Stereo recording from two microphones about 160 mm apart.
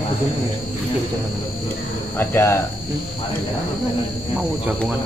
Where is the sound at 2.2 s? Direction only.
15° left (ahead or behind).